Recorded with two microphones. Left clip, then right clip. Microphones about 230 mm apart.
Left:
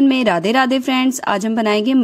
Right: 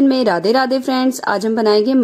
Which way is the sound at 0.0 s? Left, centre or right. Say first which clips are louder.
Right 1 dB; left.